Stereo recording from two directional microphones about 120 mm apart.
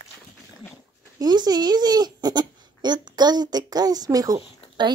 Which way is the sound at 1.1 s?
35° right (ahead or behind).